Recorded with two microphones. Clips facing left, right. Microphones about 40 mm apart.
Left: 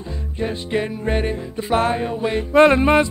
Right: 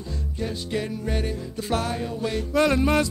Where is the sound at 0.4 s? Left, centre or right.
Left.